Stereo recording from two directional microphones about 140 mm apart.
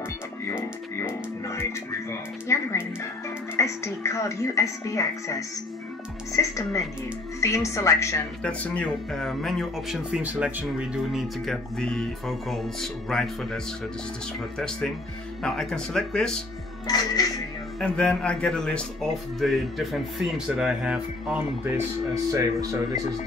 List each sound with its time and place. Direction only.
0.5 s speech: 20° left (ahead or behind)
6.3 s speech: 20° left (ahead or behind)
8.4 s a man's voice: 5° left (ahead or behind); by 11.2 s 10° right (ahead or behind)
11.4 s a man's voice: 5° left (ahead or behind)
15.4 s a man's voice: 5° left (ahead or behind)
16.8 s speech: 30° left (ahead or behind)
17.7 s a man's voice: 5° left (ahead or behind)
21.7 s speech: 25° right (ahead or behind)